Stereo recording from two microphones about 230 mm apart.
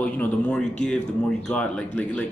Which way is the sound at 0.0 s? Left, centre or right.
Centre.